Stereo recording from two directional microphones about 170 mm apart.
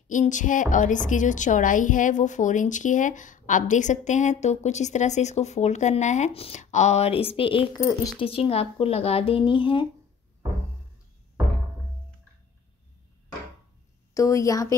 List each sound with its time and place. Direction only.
0.1 s a woman's voice: 45° left (ahead or behind); by 9.8 s 30° left (ahead or behind)
14.1 s a woman's voice: 20° left (ahead or behind)